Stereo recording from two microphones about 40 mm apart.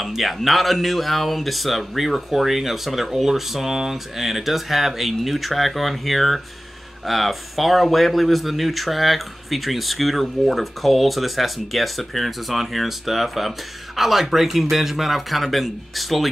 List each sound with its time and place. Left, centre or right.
0.0 s speech: centre